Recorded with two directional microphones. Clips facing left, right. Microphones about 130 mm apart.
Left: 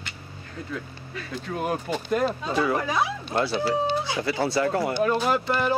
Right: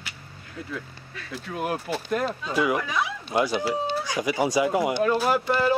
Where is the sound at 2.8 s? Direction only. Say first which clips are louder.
Left 3 dB; 35° left (ahead or behind).